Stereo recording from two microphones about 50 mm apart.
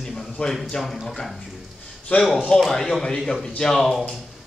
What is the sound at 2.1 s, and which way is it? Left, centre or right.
Speech, left.